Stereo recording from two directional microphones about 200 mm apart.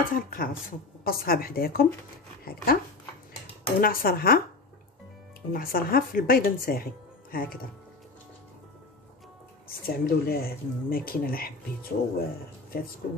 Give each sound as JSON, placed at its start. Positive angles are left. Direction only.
{"t": 0.1, "sound": "speech", "side_deg": 45}
{"t": 3.8, "sound": "speech", "side_deg": 45}
{"t": 5.5, "sound": "speech", "side_deg": 45}
{"t": 9.7, "sound": "speech", "side_deg": 50}